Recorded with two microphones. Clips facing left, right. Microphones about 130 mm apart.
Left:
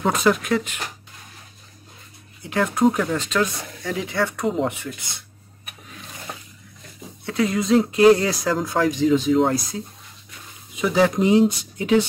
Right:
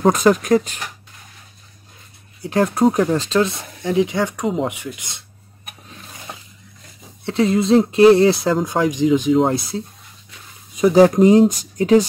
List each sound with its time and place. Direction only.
0.0 s speech: 40° right (ahead or behind)
2.4 s speech: 35° right (ahead or behind)
3.8 s speech: 20° right (ahead or behind)
7.2 s speech: 25° right (ahead or behind)
9.5 s speech: 25° right (ahead or behind)
10.8 s speech: 40° right (ahead or behind)